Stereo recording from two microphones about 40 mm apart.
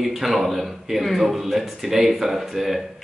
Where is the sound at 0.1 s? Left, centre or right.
Centre.